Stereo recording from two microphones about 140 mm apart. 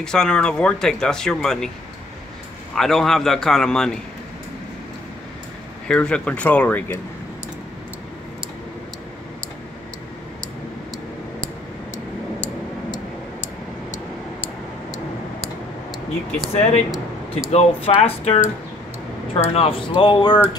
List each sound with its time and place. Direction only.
0.0 s speech: 5° left (ahead or behind)
2.7 s speech: centre (ahead or behind)
5.9 s speech: 5° left (ahead or behind)
16.5 s speech: 50° left (ahead or behind)